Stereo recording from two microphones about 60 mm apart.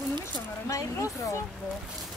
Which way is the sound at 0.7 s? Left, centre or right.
Left.